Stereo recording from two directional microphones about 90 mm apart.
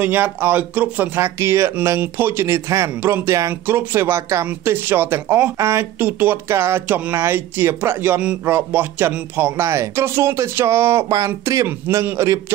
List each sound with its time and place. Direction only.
0.0 s speech: 20° right (ahead or behind)
5.9 s speech: 20° right (ahead or behind)